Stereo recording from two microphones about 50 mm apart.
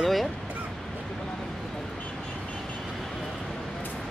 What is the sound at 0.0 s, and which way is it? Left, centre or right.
Bow-wow, centre.